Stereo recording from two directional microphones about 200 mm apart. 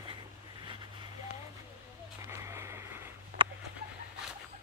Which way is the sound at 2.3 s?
15° right (ahead or behind).